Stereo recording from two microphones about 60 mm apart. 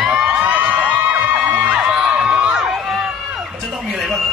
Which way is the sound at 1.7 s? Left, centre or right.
Centre.